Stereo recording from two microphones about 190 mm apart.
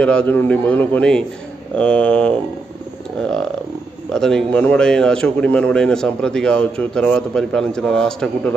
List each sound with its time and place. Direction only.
0.0 s a man's voice: 5° left (ahead or behind)